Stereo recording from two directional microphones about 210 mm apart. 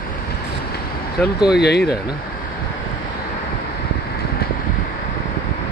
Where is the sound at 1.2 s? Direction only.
50° left (ahead or behind).